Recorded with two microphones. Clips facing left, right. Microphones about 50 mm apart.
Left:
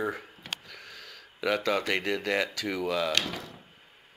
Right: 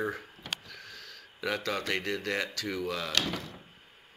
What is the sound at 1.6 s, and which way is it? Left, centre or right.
Speech, centre.